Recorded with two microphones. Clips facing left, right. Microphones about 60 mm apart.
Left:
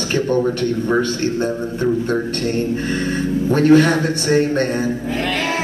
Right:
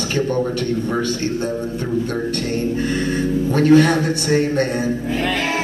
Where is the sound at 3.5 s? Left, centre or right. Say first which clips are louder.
Left 1 dB; left.